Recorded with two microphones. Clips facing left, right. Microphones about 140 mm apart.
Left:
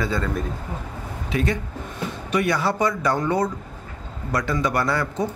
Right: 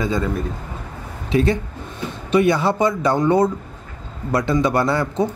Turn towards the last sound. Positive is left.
turn(degrees=-25)  # may be behind; listen again after turning